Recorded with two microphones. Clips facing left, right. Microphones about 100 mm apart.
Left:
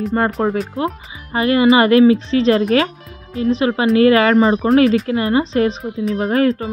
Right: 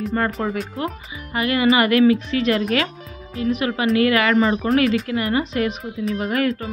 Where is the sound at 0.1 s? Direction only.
25° left (ahead or behind).